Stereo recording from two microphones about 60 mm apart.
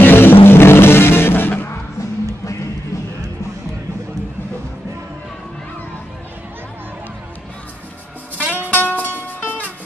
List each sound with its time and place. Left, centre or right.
0.0 s music: left
8.4 s music: right
8.7 s music: left